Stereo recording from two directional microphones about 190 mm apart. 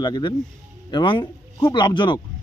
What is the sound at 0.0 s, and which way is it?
Speech, 25° left (ahead or behind).